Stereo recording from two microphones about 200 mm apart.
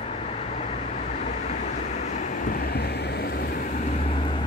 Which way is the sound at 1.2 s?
35° left (ahead or behind).